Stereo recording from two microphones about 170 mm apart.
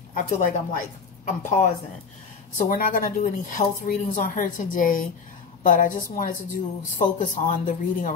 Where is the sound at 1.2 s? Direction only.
45° left (ahead or behind).